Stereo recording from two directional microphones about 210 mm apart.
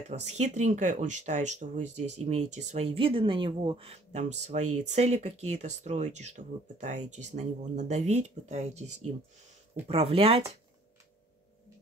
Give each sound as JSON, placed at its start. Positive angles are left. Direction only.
{"t": 0.1, "sound": "speech", "side_deg": -30}